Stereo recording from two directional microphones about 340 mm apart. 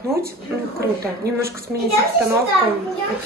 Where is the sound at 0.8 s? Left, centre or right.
Right.